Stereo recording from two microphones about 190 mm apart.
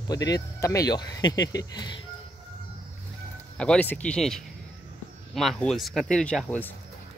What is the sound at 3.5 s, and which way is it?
Speech, 5° left (ahead or behind).